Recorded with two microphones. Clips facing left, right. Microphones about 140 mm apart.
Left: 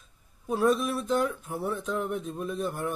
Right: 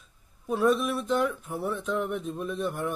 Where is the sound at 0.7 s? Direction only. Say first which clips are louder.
Right 1 dB; 35° left (ahead or behind).